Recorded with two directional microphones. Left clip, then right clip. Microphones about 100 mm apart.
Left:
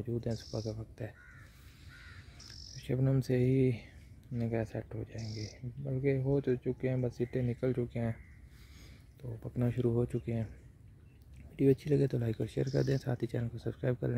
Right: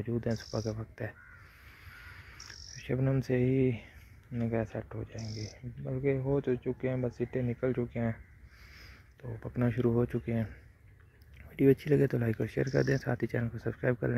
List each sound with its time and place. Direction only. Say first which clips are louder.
0.0 s speech: right 4 dB; 15° left (ahead or behind)
0.5 s speech: right 4 dB; centre (ahead or behind)
1.9 s crow: right 3 dB; centre (ahead or behind)
2.7 s speech: right 2 dB; 40° left (ahead or behind)
9.2 s speech: right 3 dB; 20° left (ahead or behind)
11.5 s speech: right 3 dB; 10° left (ahead or behind)